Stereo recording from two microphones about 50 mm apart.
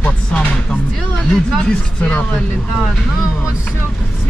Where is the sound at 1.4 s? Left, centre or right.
Centre.